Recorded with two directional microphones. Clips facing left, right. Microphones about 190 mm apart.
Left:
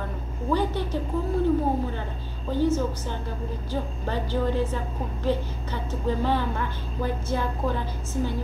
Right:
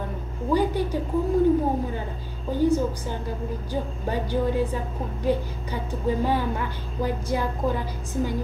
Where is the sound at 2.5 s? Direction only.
10° right (ahead or behind).